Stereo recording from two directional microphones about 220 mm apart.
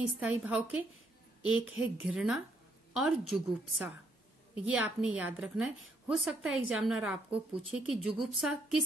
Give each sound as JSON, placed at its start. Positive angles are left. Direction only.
{"t": 0.2, "sound": "a woman's voice", "side_deg": -5}